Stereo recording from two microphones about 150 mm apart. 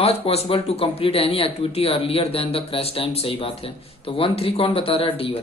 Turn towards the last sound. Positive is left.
turn(degrees=40)  # may be behind; listen again after turning